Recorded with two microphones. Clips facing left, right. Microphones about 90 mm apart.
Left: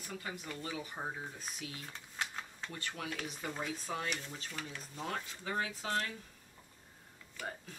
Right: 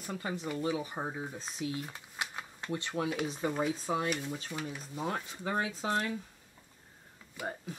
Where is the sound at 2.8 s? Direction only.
20° right (ahead or behind).